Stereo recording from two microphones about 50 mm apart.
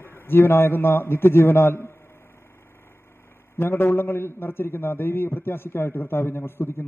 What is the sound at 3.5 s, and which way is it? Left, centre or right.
A man's voice, left.